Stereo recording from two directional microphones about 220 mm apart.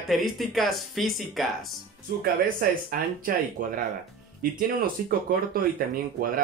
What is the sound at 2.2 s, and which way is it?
Speech, 40° right (ahead or behind).